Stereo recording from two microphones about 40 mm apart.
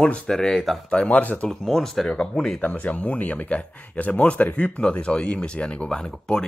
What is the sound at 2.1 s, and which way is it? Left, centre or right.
Speech, left.